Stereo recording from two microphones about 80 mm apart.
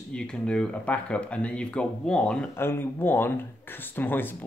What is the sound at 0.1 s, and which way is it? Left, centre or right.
Speech, centre.